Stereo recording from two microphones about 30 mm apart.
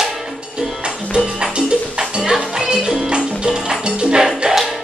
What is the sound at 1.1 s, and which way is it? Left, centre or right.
Music, right.